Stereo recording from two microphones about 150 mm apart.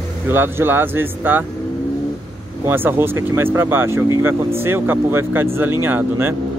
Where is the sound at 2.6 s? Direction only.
15° right (ahead or behind).